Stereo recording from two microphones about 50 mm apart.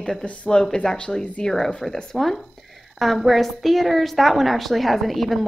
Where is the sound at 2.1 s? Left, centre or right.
Centre.